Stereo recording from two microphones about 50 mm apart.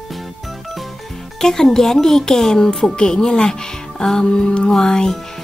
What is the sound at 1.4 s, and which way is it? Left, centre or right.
Speech, centre.